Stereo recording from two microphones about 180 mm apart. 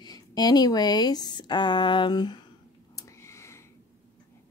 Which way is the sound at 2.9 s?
15° left (ahead or behind).